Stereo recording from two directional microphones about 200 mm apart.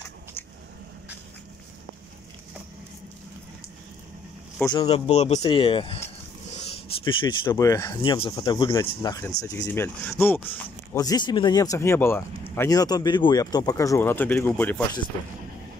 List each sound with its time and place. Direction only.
4.8 s speech: 30° left (ahead or behind); by 14.8 s 10° left (ahead or behind)